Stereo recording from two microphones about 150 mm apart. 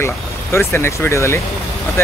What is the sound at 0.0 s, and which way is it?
Speech, 15° left (ahead or behind).